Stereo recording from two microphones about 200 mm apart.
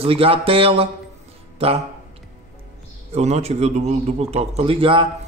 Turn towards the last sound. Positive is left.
turn(degrees=-25)  # may be behind; listen again after turning